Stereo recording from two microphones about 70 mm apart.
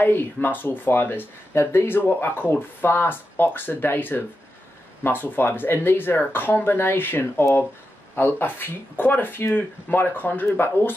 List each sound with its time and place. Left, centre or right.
0.0 s speech: left